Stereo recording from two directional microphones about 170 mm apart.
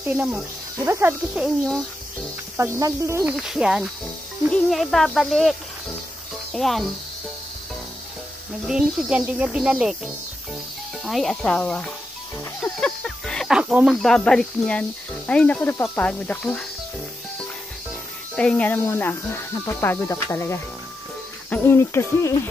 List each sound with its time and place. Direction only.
0.0 s speech: 10° right (ahead or behind)
2.5 s speech: 15° right (ahead or behind)
3.3 s speech: 5° right (ahead or behind)
8.6 s speech: 5° right (ahead or behind)
11.1 s speech: centre (ahead or behind)
18.3 s speech: 5° left (ahead or behind)